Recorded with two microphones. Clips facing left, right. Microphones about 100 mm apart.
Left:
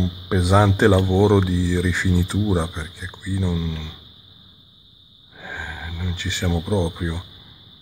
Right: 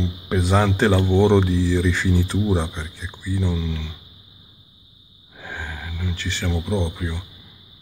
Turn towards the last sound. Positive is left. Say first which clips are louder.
# left 2 dB
turn(degrees=15)  # may be behind; listen again after turning